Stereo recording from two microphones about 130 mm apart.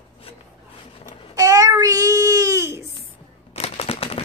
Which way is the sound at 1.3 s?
25° right (ahead or behind).